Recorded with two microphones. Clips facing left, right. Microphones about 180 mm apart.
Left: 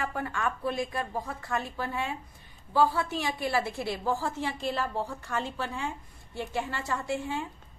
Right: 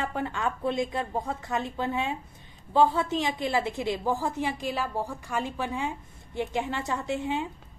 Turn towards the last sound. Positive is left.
turn(degrees=-20)  # may be behind; listen again after turning